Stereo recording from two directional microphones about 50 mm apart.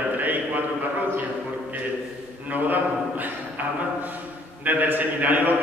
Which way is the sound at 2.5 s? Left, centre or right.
Right.